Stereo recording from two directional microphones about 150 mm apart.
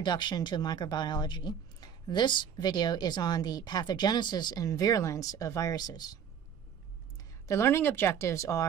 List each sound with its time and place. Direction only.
0.0 s speech: 30° left (ahead or behind)
7.4 s speech: 20° left (ahead or behind)